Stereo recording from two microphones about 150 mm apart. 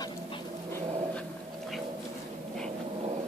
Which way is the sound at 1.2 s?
Centre (ahead or behind).